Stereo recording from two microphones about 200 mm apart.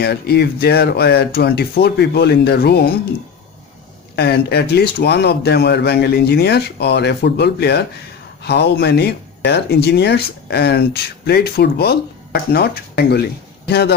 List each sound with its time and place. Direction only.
0.0 s speech: 55° left (ahead or behind)
4.1 s a man's voice: 55° left (ahead or behind)